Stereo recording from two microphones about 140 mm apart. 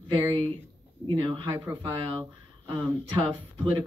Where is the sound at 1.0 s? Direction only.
35° right (ahead or behind).